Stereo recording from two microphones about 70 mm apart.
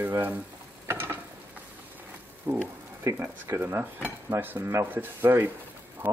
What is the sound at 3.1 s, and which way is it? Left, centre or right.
Speech, right.